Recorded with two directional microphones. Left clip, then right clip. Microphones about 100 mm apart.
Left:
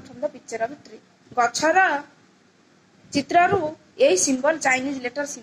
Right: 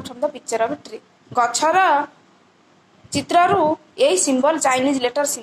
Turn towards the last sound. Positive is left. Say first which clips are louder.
# right 8 dB
turn(degrees=-35)  # may be behind; listen again after turning